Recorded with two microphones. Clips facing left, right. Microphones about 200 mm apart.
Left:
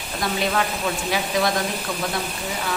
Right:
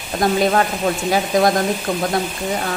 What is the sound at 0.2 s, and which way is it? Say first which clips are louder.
Speech: right 7 dB; 45° right (ahead or behind).